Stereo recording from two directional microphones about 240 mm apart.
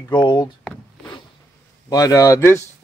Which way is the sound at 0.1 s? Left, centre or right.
Centre.